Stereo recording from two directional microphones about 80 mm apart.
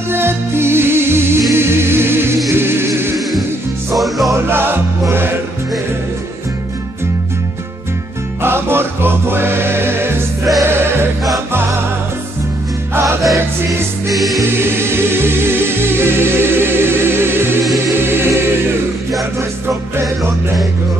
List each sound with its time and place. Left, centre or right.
0.1 s music: right
3.9 s music: centre
4.5 s music: right
8.4 s music: right
13.2 s music: centre
14.5 s music: right
18.0 s choir: right